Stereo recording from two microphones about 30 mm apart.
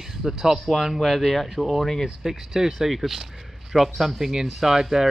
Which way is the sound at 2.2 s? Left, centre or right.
Centre.